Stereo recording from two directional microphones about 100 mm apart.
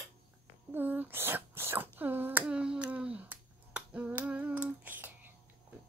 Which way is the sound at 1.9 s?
20° right (ahead or behind).